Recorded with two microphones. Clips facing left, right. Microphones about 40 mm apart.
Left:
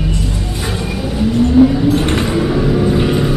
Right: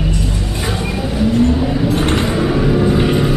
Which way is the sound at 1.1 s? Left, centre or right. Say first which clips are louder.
Left 3 dB; centre.